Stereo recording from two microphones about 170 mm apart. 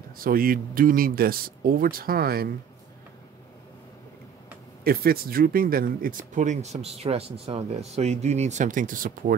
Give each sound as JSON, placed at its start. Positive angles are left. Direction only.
{"t": 0.2, "sound": "speech", "side_deg": -60}
{"t": 4.8, "sound": "speech", "side_deg": -65}